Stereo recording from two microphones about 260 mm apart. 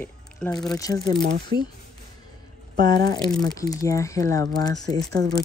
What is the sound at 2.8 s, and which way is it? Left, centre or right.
Speech, centre.